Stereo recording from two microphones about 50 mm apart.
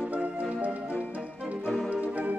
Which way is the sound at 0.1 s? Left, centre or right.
Right.